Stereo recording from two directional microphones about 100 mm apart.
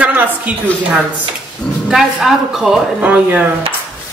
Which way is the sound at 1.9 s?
5° right (ahead or behind).